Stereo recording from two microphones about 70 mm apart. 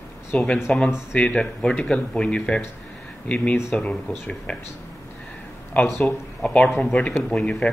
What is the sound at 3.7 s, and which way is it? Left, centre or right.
Speech, centre.